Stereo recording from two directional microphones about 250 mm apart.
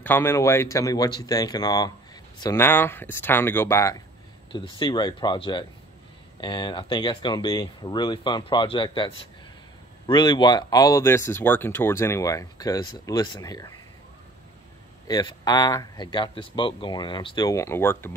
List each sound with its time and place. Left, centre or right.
0.0 s speech: centre
15.0 s speech: centre